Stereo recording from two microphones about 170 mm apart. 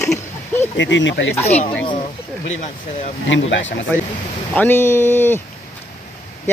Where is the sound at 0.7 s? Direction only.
90° left.